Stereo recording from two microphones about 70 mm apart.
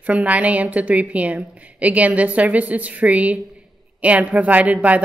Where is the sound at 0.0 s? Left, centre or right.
Centre.